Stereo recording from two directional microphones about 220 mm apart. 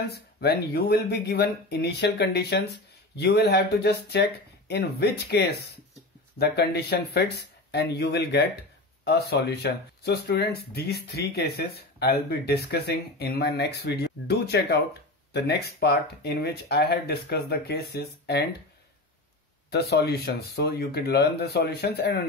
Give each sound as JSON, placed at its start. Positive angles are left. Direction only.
{"t": 0.1, "sound": "speech", "side_deg": 50}
{"t": 19.7, "sound": "speech", "side_deg": 50}